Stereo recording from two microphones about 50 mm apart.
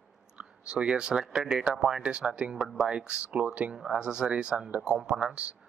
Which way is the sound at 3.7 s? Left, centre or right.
Centre.